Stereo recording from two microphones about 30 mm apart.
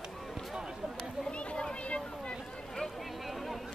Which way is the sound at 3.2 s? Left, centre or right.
Centre.